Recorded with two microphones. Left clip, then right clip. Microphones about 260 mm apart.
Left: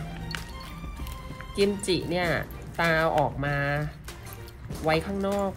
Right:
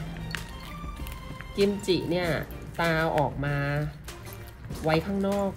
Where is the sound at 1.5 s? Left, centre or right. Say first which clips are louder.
Even; left.